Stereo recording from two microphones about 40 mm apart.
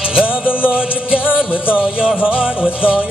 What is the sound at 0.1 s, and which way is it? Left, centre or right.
Music, right.